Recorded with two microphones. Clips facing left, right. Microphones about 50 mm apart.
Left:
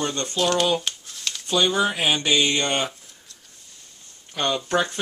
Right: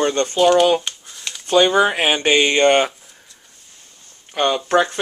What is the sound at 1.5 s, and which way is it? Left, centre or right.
Speech, right.